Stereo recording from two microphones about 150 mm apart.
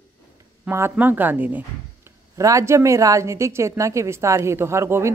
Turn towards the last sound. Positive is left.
turn(degrees=-20)  # may be behind; listen again after turning